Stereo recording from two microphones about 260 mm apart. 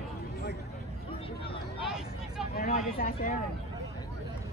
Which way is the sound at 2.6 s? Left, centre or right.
Left.